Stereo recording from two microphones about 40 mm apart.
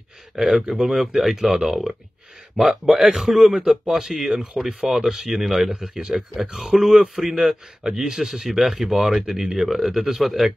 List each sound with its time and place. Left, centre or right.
0.6 s speech: centre
0.8 s speech: centre
2.6 s a man's voice: centre
6.5 s a man's voice: centre